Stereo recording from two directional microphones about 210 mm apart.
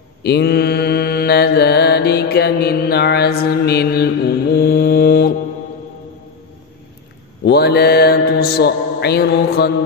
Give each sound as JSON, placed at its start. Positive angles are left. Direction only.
{"t": 0.2, "sound": "mantra", "side_deg": 50}
{"t": 7.4, "sound": "mantra", "side_deg": 50}